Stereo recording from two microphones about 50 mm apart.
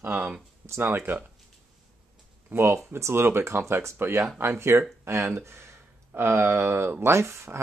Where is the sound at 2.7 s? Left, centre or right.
Right.